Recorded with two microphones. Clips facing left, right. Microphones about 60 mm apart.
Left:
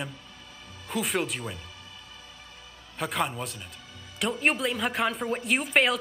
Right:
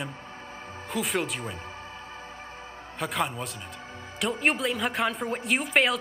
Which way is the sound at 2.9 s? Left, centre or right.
Centre.